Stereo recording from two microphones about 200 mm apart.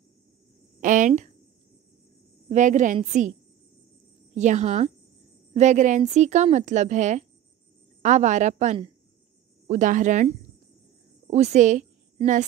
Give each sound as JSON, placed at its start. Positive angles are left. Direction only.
{"t": 0.7, "sound": "speech", "side_deg": -40}
{"t": 2.5, "sound": "a woman's voice", "side_deg": -35}
{"t": 4.4, "sound": "a woman's voice", "side_deg": -35}